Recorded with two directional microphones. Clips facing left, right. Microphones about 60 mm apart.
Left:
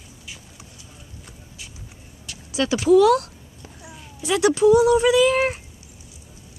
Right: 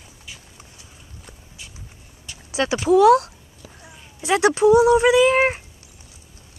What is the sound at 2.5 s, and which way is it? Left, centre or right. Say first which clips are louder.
Speech: left 1 dB; right.